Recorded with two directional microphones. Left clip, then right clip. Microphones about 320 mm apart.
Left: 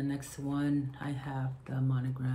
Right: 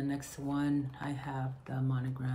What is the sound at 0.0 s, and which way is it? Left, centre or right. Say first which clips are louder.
Speech: even; centre.